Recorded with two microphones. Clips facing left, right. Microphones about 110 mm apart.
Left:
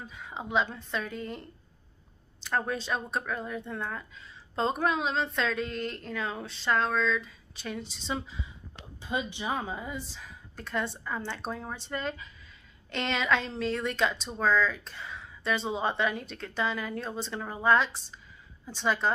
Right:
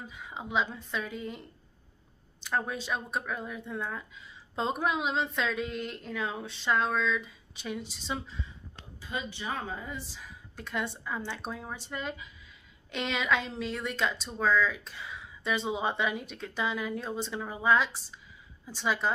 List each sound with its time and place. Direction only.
0.0 s a woman's voice: 5° right (ahead or behind)
2.4 s a woman's voice: 10° right (ahead or behind)
9.0 s speech: 20° left (ahead or behind)
9.9 s a woman's voice: 5° right (ahead or behind)